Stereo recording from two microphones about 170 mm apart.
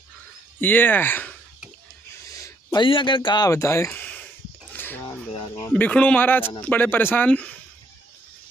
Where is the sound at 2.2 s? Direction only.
20° left (ahead or behind).